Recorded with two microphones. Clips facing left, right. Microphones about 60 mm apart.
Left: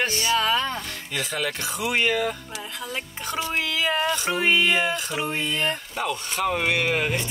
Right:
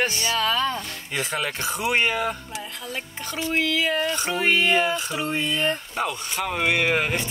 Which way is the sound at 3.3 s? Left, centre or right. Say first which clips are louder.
Right 3 dB; left.